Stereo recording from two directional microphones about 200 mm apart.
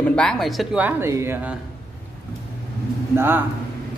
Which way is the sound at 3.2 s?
10° right (ahead or behind).